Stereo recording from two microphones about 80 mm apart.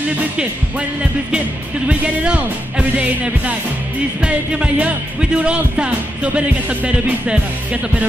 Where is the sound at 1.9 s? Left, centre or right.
Centre.